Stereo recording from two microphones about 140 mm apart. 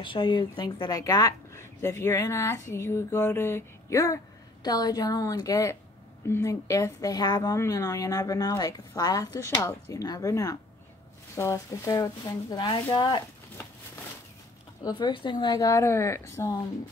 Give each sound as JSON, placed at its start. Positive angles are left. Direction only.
{"t": 0.0, "sound": "a woman's voice", "side_deg": 35}
{"t": 14.8, "sound": "a woman's voice", "side_deg": 30}